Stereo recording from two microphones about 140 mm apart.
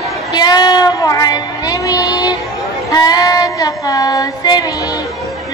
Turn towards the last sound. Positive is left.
turn(degrees=25)  # may be behind; listen again after turning